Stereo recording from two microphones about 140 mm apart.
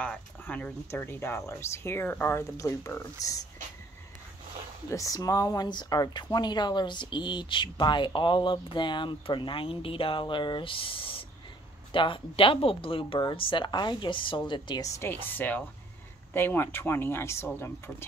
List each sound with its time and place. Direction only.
0.0 s speech: 10° left (ahead or behind); by 3.4 s 25° left (ahead or behind)
4.8 s speech: 25° left (ahead or behind)
14.9 s speech: 15° left (ahead or behind)